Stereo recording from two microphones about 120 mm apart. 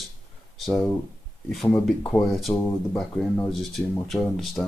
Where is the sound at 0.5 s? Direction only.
5° left (ahead or behind).